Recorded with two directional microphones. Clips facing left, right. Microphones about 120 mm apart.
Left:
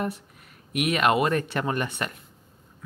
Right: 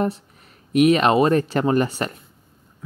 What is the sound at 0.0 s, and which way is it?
Speech, 35° right (ahead or behind).